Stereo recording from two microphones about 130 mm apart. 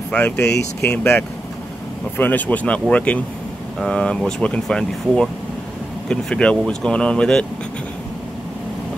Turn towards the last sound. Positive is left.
turn(degrees=5)  # may be behind; listen again after turning